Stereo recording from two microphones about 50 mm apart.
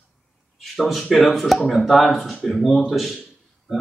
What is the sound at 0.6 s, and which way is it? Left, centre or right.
Speech, centre.